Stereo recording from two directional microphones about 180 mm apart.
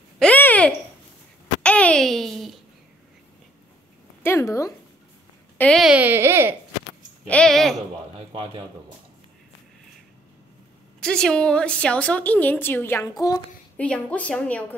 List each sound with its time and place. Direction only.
0.2 s a sound: 10° left (ahead or behind)
4.2 s speech: 15° left (ahead or behind)
5.6 s speech: centre (ahead or behind)
7.2 s speech: 5° left (ahead or behind)
8.3 s a man's voice: 30° right (ahead or behind)
11.0 s a woman's voice: 5° left (ahead or behind); by 13.4 s 20° left (ahead or behind)
13.7 s a woman's voice: 5° left (ahead or behind)